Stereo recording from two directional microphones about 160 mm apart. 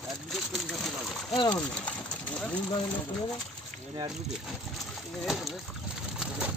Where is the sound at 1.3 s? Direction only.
25° left (ahead or behind).